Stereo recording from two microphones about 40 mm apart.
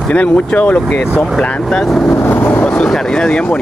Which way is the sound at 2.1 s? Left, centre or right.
Left.